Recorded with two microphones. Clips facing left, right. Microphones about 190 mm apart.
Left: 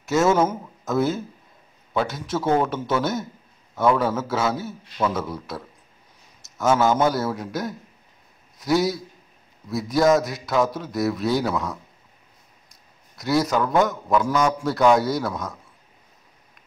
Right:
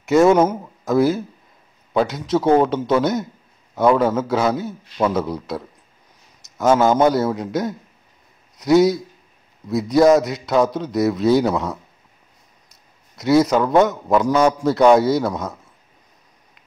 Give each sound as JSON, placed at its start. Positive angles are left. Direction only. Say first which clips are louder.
{"t": 0.0, "sound": "a man's voice", "louder": "right 6 dB", "side_deg": -15}
{"t": 2.0, "sound": "a man's voice", "louder": "right 6 dB", "side_deg": -20}
{"t": 13.2, "sound": "a man's voice", "louder": "right 6 dB", "side_deg": -20}